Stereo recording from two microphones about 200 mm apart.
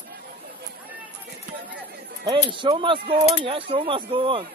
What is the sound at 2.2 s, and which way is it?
Speech, 25° right (ahead or behind).